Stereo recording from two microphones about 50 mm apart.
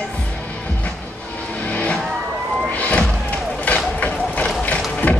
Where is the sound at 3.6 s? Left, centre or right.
Left.